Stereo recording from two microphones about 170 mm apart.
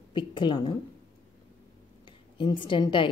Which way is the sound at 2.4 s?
30° left (ahead or behind).